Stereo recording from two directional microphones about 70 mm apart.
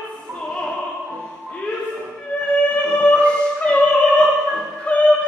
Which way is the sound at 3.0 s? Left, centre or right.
Centre.